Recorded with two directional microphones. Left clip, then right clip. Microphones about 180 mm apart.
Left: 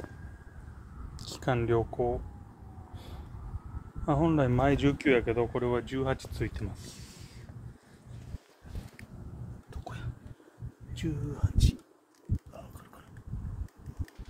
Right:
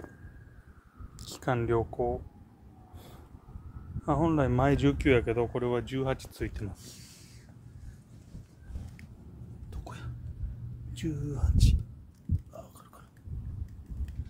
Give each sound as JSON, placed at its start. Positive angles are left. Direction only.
{"t": 1.2, "sound": "speech", "side_deg": -15}
{"t": 4.0, "sound": "speech", "side_deg": -15}
{"t": 9.7, "sound": "a sound", "side_deg": -30}
{"t": 10.9, "sound": "speech", "side_deg": -30}